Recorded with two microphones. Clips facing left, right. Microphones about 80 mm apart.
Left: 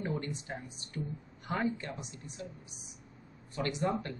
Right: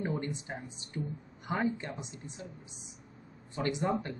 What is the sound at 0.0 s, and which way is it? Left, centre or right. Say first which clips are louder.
Speech: right 2 dB; right.